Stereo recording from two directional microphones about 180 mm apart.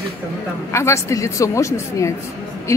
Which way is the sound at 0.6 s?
15° left (ahead or behind).